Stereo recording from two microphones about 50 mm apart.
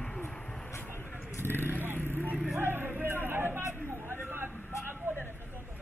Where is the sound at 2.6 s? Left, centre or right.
Right.